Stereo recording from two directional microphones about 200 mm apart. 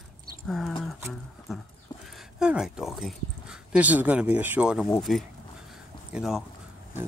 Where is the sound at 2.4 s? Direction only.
5° right (ahead or behind).